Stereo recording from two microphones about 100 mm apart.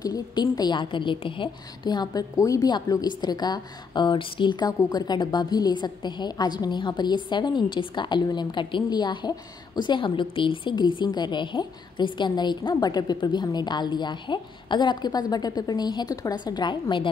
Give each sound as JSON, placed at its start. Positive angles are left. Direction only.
{"t": 0.0, "sound": "a woman's voice", "side_deg": 40}